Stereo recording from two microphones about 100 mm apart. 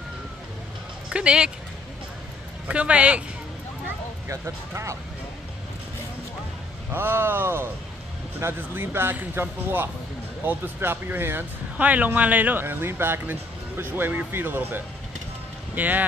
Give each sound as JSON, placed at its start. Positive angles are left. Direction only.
{"t": 1.1, "sound": "speech", "side_deg": -10}
{"t": 2.7, "sound": "speech", "side_deg": -10}
{"t": 6.9, "sound": "speech", "side_deg": -25}